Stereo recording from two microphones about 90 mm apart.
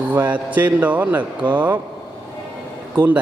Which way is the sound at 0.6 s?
20° right (ahead or behind).